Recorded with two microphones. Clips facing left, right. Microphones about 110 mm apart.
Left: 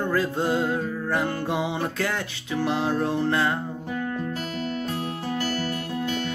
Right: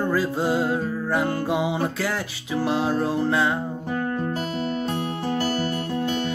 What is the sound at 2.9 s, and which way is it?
Music, 10° right (ahead or behind).